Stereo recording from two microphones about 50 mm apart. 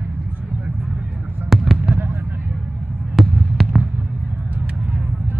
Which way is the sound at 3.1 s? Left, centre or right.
Centre.